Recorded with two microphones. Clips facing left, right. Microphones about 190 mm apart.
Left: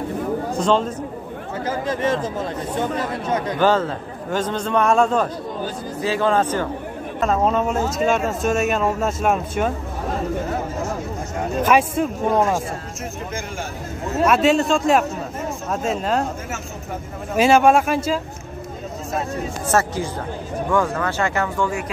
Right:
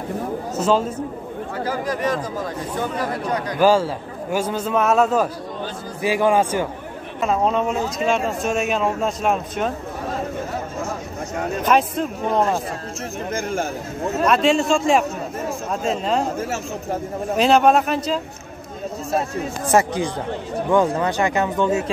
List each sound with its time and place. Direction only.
0.6 s a man's voice: 5° right (ahead or behind)
1.6 s speech: 25° left (ahead or behind)
3.5 s a man's voice: 10° right (ahead or behind)
7.2 s speech: centre (ahead or behind)
11.6 s a man's voice: 10° left (ahead or behind)
14.2 s speech: 5° left (ahead or behind)
17.4 s a man's voice: 5° left (ahead or behind)
19.7 s a man's voice: 15° right (ahead or behind)